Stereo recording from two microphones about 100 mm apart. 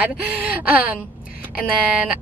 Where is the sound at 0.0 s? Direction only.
15° right (ahead or behind).